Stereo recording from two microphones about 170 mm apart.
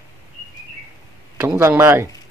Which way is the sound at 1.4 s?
15° right (ahead or behind).